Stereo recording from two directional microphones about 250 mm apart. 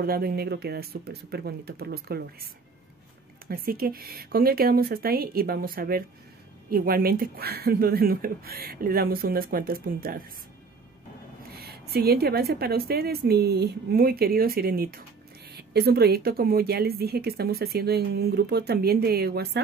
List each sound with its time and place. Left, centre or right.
0.0 s a woman's voice: right
11.5 s a woman's voice: right